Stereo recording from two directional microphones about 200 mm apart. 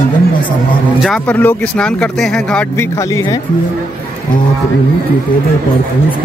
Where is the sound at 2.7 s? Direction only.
15° left (ahead or behind).